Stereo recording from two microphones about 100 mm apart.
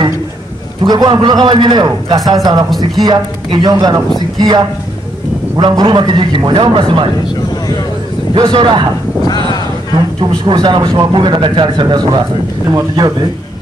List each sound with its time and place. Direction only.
0.8 s speech: 40° right (ahead or behind)
8.4 s speech: 50° right (ahead or behind)
9.9 s speech: 50° right (ahead or behind)
12.6 s speech: 40° right (ahead or behind)